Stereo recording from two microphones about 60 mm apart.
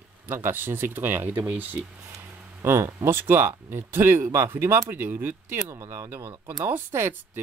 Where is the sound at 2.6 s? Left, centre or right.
Right.